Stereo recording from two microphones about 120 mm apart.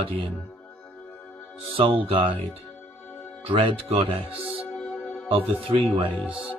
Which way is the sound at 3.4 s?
50° right (ahead or behind).